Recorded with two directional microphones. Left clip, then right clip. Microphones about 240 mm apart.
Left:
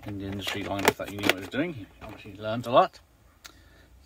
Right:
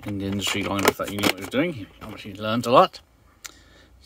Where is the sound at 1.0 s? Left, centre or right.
Right.